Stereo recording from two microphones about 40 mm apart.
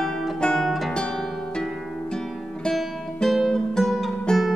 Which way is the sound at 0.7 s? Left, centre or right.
Centre.